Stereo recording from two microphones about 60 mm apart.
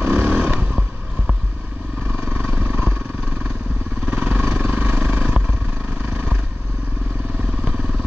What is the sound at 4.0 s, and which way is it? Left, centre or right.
Vehicle, right.